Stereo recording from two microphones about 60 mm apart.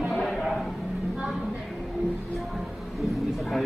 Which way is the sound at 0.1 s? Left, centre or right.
Centre.